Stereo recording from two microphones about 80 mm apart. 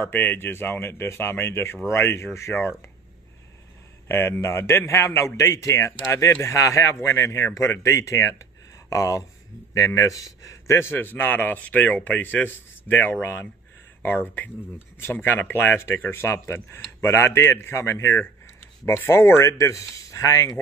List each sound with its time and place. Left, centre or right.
0.0 s a man's voice: left
4.1 s a man's voice: left